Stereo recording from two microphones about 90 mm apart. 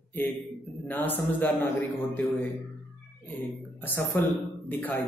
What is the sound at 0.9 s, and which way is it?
Speech, 20° left (ahead or behind).